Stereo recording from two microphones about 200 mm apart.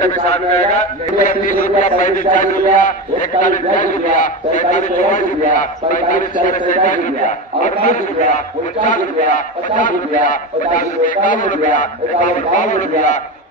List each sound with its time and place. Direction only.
0.7 s a man's voice: 40° left (ahead or behind)